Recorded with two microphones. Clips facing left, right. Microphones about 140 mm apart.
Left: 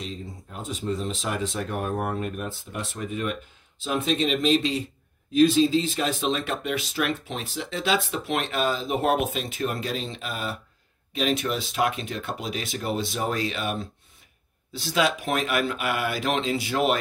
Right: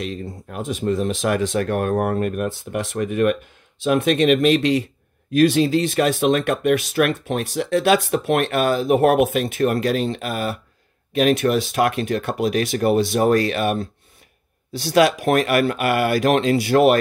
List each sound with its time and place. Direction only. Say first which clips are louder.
0.0 s speech: right 7 dB; 70° right (ahead or behind)